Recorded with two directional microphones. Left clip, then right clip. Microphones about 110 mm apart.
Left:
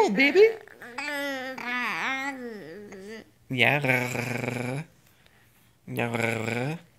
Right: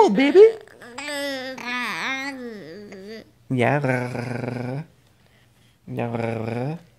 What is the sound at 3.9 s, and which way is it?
Speech, 15° right (ahead or behind).